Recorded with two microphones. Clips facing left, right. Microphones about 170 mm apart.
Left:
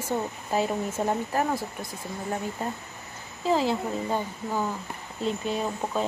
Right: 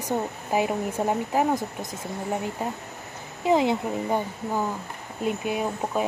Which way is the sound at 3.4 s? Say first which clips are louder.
Right 3 dB; 15° right (ahead or behind).